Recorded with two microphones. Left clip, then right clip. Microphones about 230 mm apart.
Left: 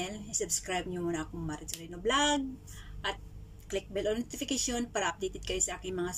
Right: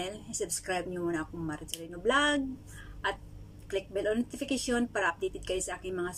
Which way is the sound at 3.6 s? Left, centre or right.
Centre.